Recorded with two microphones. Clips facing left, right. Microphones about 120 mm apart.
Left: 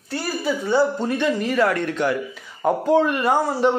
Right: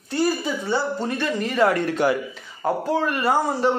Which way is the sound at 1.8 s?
40° right (ahead or behind).